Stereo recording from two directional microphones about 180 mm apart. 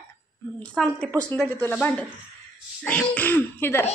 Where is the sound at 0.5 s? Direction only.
5° left (ahead or behind).